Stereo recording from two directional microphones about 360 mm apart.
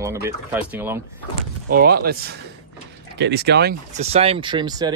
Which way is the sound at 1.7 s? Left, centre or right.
Right.